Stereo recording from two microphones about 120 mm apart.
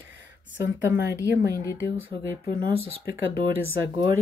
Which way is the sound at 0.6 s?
20° right (ahead or behind).